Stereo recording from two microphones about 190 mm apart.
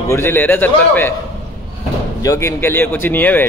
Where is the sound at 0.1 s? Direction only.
10° left (ahead or behind).